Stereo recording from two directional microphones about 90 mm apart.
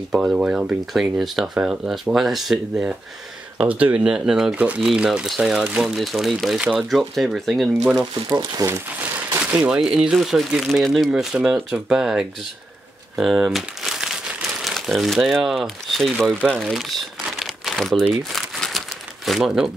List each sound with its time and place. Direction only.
0.1 s speech: 10° right (ahead or behind)
8.3 s speech: 45° right (ahead or behind)
8.6 s speech: 25° right (ahead or behind)
9.4 s speech: 15° right (ahead or behind)
13.1 s crumpling: 5° right (ahead or behind)
15.4 s speech: centre (ahead or behind)
16.4 s crumpling: centre (ahead or behind)